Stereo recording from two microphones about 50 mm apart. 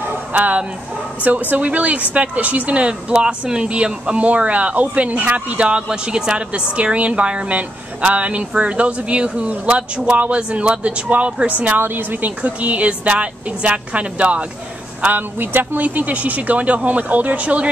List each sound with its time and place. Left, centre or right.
0.0 s a sound: right
1.2 s speech: right
11.8 s speech: right
15.3 s speech: right